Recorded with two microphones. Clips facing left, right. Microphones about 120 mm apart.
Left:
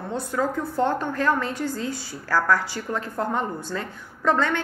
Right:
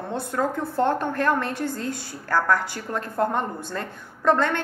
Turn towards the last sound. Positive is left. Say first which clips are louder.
# right 2 dB
turn(degrees=-55)  # may be behind; listen again after turning